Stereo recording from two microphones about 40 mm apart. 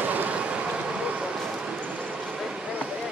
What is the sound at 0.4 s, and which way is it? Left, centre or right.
Vehicle, right.